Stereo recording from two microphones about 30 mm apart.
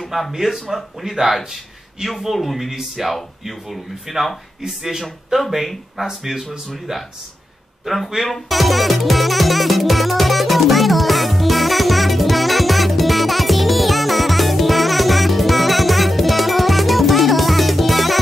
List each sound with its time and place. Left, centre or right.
0.0 s a sound: centre
0.3 s speech: centre
2.0 s speech: centre
5.9 s speech: centre
8.2 s music: centre